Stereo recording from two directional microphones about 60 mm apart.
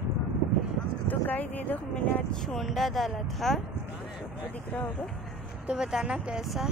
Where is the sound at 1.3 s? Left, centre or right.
Left.